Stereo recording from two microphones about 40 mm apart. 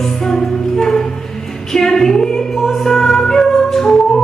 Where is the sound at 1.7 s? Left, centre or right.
Centre.